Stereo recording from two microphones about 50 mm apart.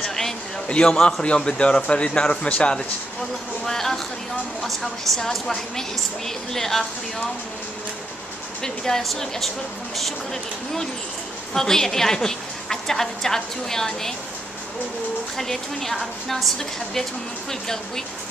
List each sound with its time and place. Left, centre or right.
0.0 s a sound: centre
0.7 s a man's voice: centre
3.6 s a sound: centre
4.6 s a woman's voice: centre
8.6 s a woman's voice: centre
15.3 s a woman's voice: centre